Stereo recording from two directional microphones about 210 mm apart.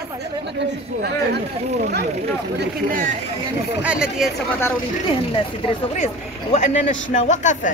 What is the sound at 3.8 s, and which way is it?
Speech, 5° right (ahead or behind).